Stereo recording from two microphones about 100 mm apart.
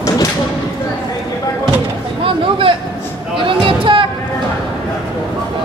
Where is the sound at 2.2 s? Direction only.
60° right (ahead or behind).